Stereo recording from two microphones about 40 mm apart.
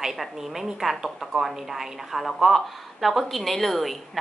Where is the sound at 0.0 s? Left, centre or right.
Centre.